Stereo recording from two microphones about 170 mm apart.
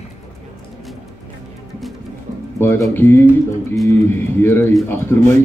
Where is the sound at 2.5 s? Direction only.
15° left (ahead or behind).